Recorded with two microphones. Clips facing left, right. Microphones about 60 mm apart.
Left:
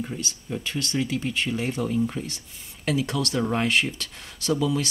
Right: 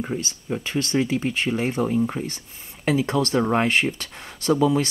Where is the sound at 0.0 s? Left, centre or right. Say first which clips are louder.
Right 4 dB; right.